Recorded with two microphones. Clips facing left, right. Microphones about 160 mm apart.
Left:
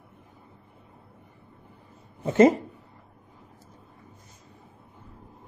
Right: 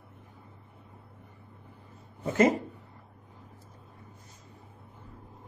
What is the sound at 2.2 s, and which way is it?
Speech, 30° left (ahead or behind).